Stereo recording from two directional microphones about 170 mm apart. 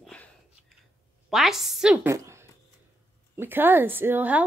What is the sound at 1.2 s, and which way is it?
A woman's voice, centre (ahead or behind).